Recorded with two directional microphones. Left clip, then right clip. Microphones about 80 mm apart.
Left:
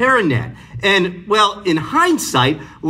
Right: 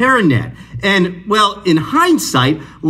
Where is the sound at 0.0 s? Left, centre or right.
Right.